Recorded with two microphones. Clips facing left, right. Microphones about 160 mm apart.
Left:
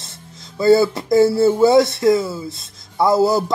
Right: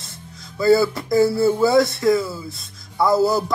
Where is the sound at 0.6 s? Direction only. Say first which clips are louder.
Left 3 dB; 25° left (ahead or behind).